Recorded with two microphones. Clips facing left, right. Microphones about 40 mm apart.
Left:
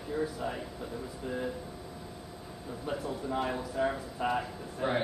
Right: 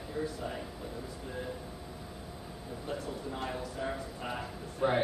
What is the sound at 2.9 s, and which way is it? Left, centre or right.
A man's voice, centre.